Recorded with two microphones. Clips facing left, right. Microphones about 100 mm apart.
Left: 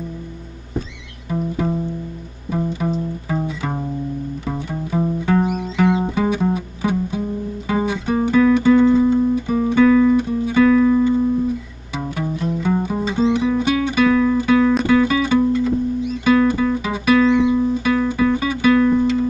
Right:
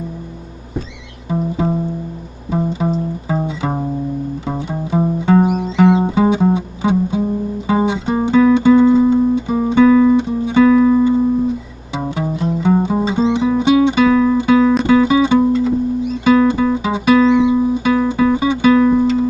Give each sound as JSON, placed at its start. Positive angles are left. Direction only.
{"t": 1.3, "sound": "music", "side_deg": -25}
{"t": 2.8, "sound": "music", "side_deg": -25}
{"t": 16.3, "sound": "guitar", "side_deg": -20}